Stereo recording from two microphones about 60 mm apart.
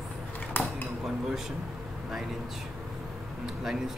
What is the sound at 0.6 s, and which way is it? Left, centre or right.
Dishes, left.